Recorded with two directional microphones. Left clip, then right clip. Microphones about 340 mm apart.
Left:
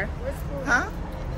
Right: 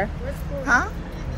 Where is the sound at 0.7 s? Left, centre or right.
Centre.